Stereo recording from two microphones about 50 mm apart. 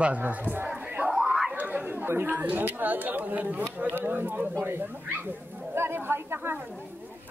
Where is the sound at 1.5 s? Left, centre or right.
Right.